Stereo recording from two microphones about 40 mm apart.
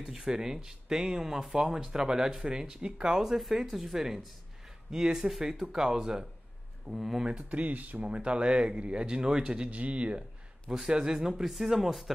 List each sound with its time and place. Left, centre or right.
0.0 s speech: centre
6.9 s speech: centre
7.5 s speech: right
8.0 s speech: right
9.7 s speech: right
10.9 s speech: centre